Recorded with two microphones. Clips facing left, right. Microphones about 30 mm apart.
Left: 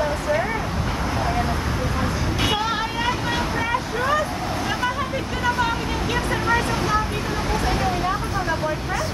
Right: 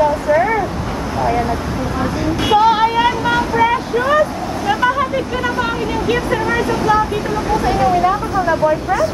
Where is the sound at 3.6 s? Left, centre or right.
Right.